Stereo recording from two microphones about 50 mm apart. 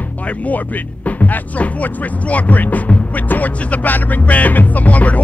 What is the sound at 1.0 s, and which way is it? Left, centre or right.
Speech, left.